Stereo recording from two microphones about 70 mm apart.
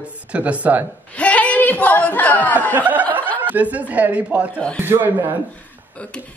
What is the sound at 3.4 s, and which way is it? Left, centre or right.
Speech, right.